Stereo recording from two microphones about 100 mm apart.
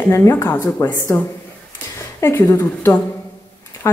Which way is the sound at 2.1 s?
30° left (ahead or behind).